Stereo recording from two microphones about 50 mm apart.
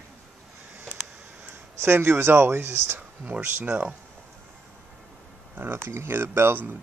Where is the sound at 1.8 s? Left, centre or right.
Right.